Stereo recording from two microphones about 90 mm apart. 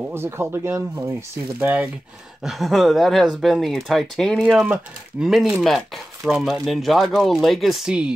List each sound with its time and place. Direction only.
0.1 s speech: 25° right (ahead or behind)
1.6 s speech: 15° right (ahead or behind)
2.4 s speech: centre (ahead or behind)
4.4 s speech: 15° right (ahead or behind)
5.2 s speech: 5° right (ahead or behind)